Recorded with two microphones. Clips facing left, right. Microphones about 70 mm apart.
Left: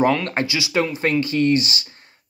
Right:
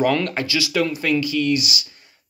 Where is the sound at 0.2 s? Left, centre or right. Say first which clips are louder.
Left 1 dB; left.